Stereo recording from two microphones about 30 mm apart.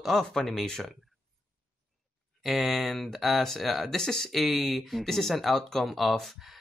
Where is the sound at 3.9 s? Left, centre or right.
Centre.